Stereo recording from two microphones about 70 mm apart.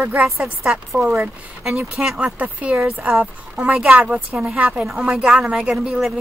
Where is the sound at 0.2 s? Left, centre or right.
Centre.